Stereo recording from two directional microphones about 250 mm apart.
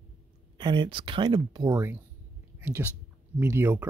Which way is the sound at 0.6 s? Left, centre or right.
Centre.